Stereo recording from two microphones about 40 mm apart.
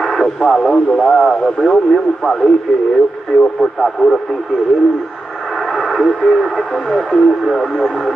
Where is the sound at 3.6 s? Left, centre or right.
Centre.